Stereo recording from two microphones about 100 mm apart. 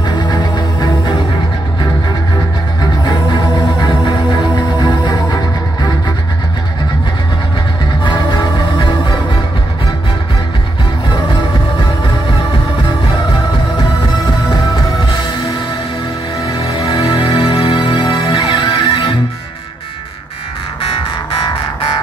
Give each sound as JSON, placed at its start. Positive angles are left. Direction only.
{"t": 0.0, "sound": "music", "side_deg": 45}
{"t": 4.0, "sound": "music", "side_deg": 45}
{"t": 8.0, "sound": "music", "side_deg": 50}
{"t": 16.5, "sound": "music", "side_deg": 70}